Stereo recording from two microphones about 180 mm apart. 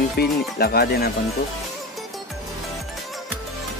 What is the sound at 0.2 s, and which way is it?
Speech, 60° left (ahead or behind).